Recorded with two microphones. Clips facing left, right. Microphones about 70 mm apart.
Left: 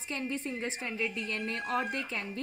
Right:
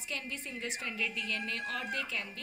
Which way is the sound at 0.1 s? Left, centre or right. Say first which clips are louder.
Left 6 dB; left.